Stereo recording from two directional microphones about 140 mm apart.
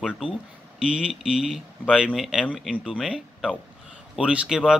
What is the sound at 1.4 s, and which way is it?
Speech, 5° right (ahead or behind).